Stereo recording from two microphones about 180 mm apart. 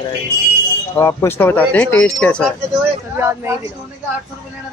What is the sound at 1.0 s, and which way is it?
Speech, 15° left (ahead or behind).